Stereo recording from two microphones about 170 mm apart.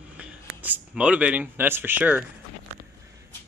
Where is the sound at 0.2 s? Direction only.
10° right (ahead or behind).